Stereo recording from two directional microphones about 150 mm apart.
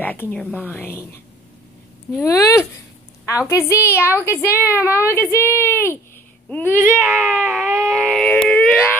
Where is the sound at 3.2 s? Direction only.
20° left (ahead or behind).